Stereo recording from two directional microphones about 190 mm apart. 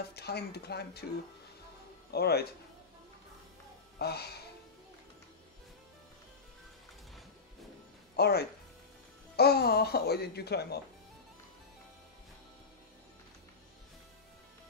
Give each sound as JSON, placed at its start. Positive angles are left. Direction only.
{"t": 0.1, "sound": "speech", "side_deg": 60}
{"t": 2.0, "sound": "speech", "side_deg": 55}
{"t": 4.0, "sound": "speech", "side_deg": 60}
{"t": 8.2, "sound": "speech", "side_deg": 60}